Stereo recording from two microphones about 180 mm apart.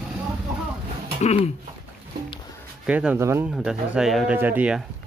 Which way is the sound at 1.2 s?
35° left (ahead or behind).